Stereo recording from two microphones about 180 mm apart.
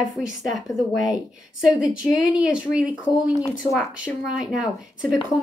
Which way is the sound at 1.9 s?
5° right (ahead or behind).